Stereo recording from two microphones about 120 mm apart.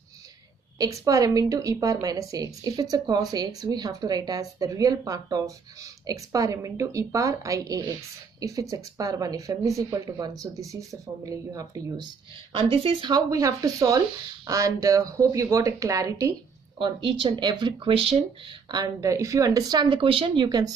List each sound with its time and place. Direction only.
0.7 s a woman's voice: 30° right (ahead or behind)
12.5 s speech: 50° right (ahead or behind)
13.1 s speech: 30° right (ahead or behind)
16.7 s speech: 45° right (ahead or behind)
18.7 s a woman's voice: 30° right (ahead or behind)